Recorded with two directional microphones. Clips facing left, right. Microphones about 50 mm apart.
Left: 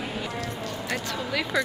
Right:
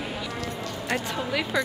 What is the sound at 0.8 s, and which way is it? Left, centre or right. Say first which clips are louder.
Speech: right 4 dB; centre.